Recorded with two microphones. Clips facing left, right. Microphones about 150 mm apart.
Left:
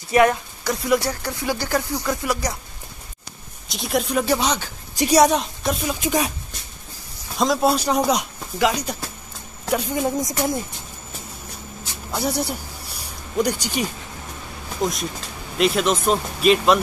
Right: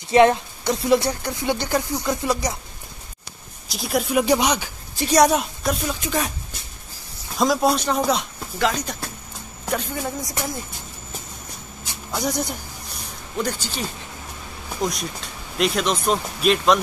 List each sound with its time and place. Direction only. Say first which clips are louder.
0.1 s speech: right 2 dB; 25° right (ahead or behind)
3.6 s a woman's voice: even; centre (ahead or behind)
4.2 s speech: right 5 dB; 15° right (ahead or behind)
4.9 s a woman's voice: left 2 dB; 15° left (ahead or behind)
5.2 s a woman's voice: even; centre (ahead or behind)
5.9 s speech: left 3 dB; 20° left (ahead or behind)
7.3 s speech: even; centre (ahead or behind); by 10.6 s 20° left (ahead or behind)
12.1 s a sound: left 1 dB; 10° left (ahead or behind)
14.8 s speech: left 2 dB; centre (ahead or behind)